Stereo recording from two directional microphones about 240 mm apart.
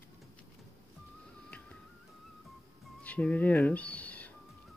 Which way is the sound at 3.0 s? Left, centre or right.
Centre.